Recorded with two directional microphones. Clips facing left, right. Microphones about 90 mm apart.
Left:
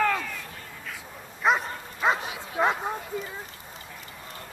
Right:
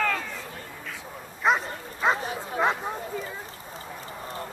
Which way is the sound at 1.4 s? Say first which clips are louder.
Even; centre (ahead or behind).